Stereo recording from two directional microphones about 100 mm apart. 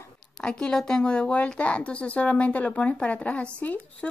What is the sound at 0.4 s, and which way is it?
A woman's voice, 10° left (ahead or behind).